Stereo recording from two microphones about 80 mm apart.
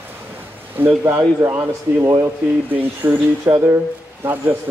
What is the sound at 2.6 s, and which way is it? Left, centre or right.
A man's voice, right.